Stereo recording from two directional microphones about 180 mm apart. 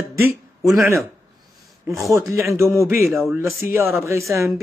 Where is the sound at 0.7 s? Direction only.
15° right (ahead or behind).